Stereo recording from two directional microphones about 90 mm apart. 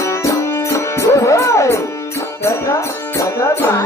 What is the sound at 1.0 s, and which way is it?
Music, 35° left (ahead or behind).